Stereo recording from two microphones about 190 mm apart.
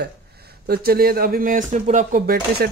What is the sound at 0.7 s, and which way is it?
Speech, 50° right (ahead or behind).